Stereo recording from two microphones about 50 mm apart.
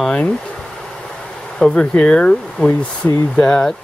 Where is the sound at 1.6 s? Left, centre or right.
Centre.